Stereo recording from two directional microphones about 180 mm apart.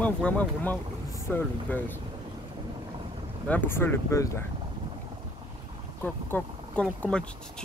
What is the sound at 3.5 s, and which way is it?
Speech, 10° left (ahead or behind).